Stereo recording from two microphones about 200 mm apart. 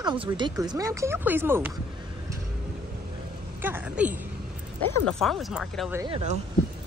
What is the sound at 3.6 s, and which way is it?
Speech, 10° right (ahead or behind).